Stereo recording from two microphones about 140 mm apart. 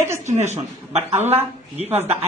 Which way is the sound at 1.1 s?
50° right (ahead or behind).